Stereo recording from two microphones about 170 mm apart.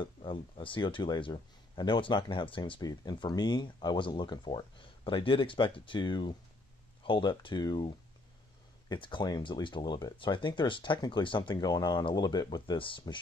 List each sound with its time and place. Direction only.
0.0 s speech: 30° left (ahead or behind)